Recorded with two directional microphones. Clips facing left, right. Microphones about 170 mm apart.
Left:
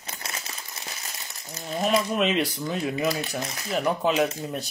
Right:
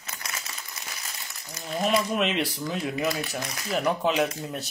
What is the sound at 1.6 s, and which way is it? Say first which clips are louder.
Speech: left 1 dB; centre (ahead or behind).